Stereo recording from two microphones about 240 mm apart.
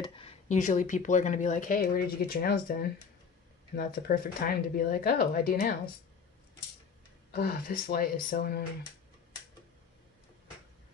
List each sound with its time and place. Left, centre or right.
0.0 s speech: left
7.2 s speech: left